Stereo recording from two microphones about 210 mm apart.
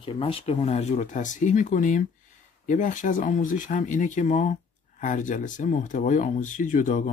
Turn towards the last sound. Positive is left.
turn(degrees=35)  # may be behind; listen again after turning